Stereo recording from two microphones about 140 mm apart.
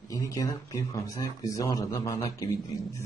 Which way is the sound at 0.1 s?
20° left (ahead or behind).